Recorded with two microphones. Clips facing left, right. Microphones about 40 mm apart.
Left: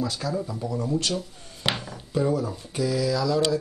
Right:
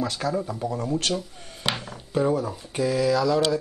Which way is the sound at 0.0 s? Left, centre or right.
Right.